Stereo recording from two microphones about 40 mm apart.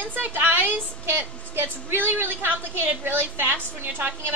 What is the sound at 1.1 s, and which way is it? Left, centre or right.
Speech, right.